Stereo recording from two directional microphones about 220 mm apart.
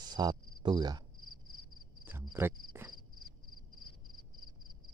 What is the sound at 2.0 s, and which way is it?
Cricket, 10° right (ahead or behind).